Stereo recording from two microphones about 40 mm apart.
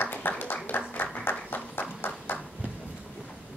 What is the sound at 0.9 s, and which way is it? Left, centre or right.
Applause, left.